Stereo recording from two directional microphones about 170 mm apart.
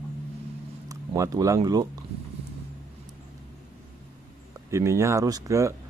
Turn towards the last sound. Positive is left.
turn(degrees=-15)  # may be behind; listen again after turning